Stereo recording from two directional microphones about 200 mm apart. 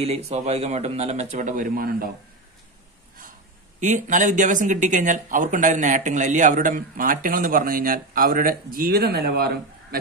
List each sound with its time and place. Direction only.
0.0 s speech: 30° right (ahead or behind)
3.8 s speech: 40° right (ahead or behind)